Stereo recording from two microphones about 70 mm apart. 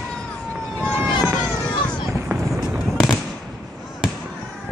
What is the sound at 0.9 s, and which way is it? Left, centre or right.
Vehicle, right.